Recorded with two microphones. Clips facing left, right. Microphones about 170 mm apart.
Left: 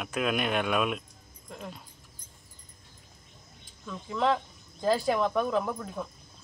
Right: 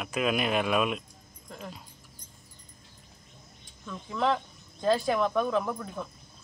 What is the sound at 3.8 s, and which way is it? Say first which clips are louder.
Speech: left 1 dB; centre (ahead or behind).